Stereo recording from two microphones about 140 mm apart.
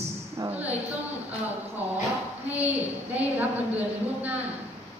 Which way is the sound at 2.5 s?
10° right (ahead or behind).